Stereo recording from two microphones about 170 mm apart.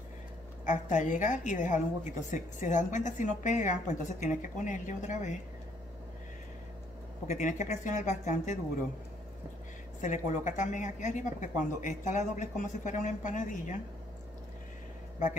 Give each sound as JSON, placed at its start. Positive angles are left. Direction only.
{"t": 0.7, "sound": "a woman's voice", "side_deg": 45}
{"t": 7.2, "sound": "a woman's voice", "side_deg": 45}
{"t": 9.9, "sound": "a woman's voice", "side_deg": 50}